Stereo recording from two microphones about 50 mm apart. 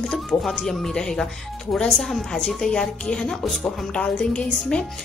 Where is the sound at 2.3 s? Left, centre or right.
Centre.